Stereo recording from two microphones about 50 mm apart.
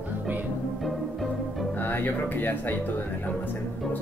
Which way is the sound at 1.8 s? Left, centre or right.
Left.